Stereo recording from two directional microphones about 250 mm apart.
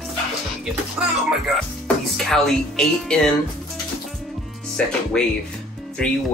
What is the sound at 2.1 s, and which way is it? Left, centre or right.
Speech, centre.